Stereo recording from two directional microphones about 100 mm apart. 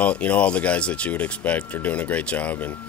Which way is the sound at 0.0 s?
15° left (ahead or behind).